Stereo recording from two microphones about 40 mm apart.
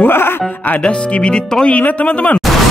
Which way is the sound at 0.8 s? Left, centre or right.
Left.